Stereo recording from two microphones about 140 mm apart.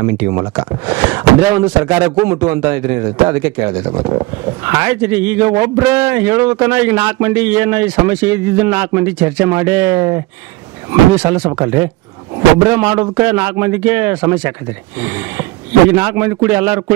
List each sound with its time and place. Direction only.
0.1 s a man's voice: 15° right (ahead or behind)
3.9 s a man's voice: 40° right (ahead or behind); by 11.6 s 15° right (ahead or behind)
12.6 s a man's voice: 15° right (ahead or behind)